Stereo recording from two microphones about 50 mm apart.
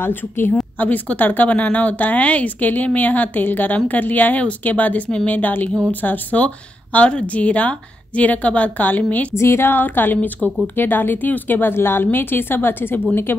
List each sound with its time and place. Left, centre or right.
0.0 s speech: left
0.7 s speech: left
9.3 s a sound: left
9.7 s speech: left